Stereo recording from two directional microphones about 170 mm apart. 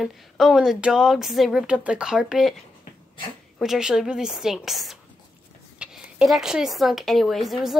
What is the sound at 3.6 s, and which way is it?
Speech, 5° right (ahead or behind).